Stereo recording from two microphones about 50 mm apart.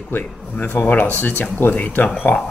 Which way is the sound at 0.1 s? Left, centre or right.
Left.